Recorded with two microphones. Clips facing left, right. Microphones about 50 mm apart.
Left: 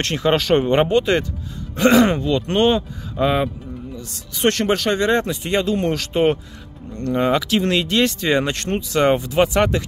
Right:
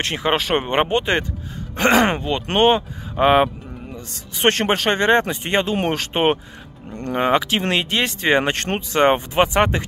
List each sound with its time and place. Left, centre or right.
0.0 s speech: centre; by 3.4 s right
3.9 s speech: right